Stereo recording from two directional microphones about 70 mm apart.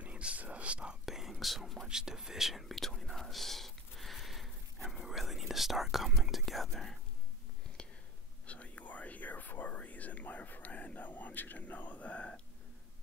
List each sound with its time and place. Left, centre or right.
0.0 s whispering: centre
1.0 s whispering: centre
7.8 s a sound: centre
8.5 s whispering: centre